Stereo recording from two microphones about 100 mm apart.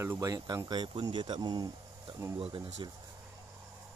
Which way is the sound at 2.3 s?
60° right (ahead or behind).